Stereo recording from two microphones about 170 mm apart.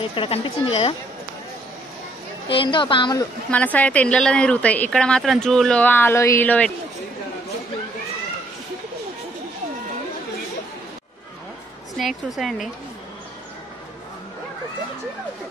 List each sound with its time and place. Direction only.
0.1 s speech: 30° left (ahead or behind)
2.4 s a woman's voice: 30° left (ahead or behind)
3.4 s a woman's voice: 10° left (ahead or behind)
12.0 s speech: centre (ahead or behind)